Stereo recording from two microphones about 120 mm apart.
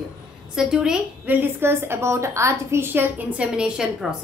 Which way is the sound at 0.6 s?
5° right (ahead or behind).